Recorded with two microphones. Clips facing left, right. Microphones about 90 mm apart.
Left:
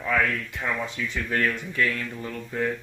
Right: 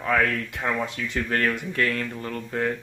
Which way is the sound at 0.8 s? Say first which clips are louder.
Right 2 dB; 60° right (ahead or behind).